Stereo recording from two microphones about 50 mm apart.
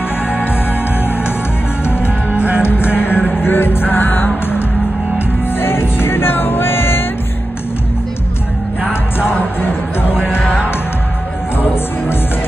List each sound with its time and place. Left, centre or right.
1.9 s music: left
2.3 s music: right
2.6 s music: left
5.6 s music: left
9.3 s music: left
11.6 s music: left